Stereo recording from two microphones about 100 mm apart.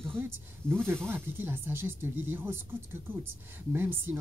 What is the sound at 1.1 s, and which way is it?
Speech, 20° right (ahead or behind).